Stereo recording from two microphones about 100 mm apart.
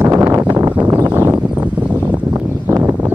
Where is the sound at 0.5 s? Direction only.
20° right (ahead or behind).